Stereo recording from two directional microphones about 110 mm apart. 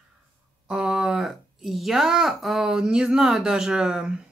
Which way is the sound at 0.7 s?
5° right (ahead or behind).